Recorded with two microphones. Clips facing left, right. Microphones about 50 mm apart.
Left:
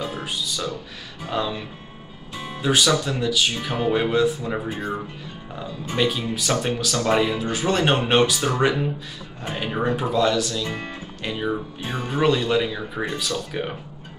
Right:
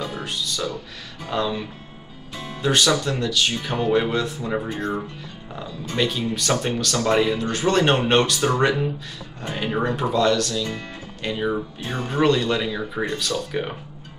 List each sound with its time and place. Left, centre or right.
0.0 s music: centre
1.2 s speech: centre
2.3 s music: centre
3.0 s speech: centre
4.6 s speech: centre
10.6 s speech: left
11.2 s speech: centre
11.8 s speech: centre